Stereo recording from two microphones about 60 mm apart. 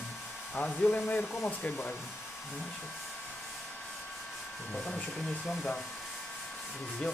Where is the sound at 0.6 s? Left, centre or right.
Left.